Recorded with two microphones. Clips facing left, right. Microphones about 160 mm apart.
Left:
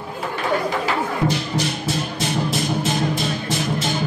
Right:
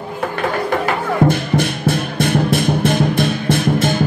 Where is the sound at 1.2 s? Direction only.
55° right (ahead or behind).